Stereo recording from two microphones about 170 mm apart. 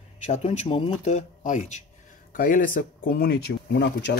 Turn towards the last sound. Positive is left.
turn(degrees=85)